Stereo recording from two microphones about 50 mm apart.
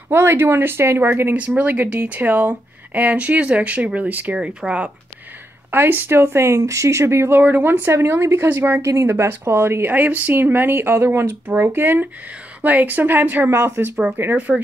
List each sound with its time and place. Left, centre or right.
0.1 s speech: right
1.3 s speech: right
4.4 s speech: right
5.7 s speech: right
7.3 s speech: right
8.8 s speech: right
13.5 s speech: right